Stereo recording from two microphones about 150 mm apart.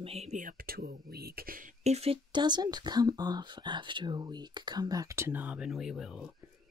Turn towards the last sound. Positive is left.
turn(degrees=0)  # may be behind; listen again after turning